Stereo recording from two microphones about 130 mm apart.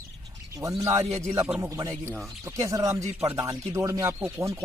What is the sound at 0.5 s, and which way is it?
Speech, 25° right (ahead or behind).